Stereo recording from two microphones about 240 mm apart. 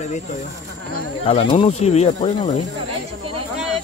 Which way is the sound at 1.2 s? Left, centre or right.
Left.